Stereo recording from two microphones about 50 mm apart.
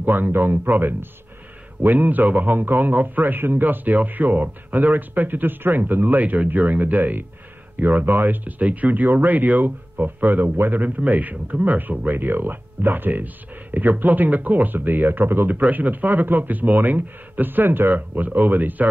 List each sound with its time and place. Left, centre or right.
0.0 s a man's voice: right
12.1 s a man's voice: right
15.6 s a man's voice: right